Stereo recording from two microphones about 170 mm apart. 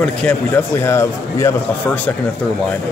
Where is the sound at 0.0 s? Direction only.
5° left (ahead or behind).